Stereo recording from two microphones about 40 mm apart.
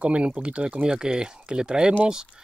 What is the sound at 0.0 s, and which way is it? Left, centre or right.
Speech, right.